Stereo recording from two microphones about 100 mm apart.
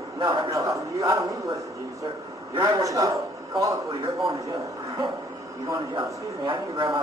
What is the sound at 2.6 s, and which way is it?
Speech, 35° right (ahead or behind).